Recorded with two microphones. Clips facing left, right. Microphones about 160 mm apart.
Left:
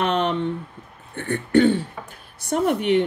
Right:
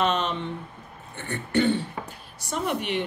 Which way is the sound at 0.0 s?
55° left (ahead or behind).